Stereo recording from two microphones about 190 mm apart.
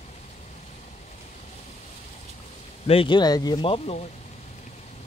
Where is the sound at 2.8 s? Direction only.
25° left (ahead or behind).